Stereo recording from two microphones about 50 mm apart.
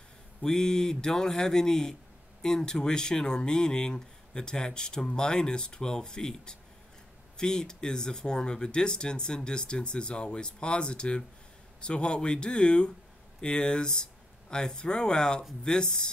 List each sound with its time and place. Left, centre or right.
0.4 s speech: centre